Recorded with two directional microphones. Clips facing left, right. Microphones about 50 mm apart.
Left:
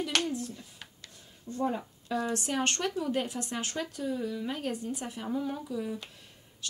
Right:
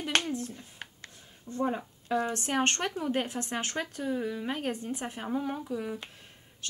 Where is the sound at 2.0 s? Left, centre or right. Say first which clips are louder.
Right 2 dB; right.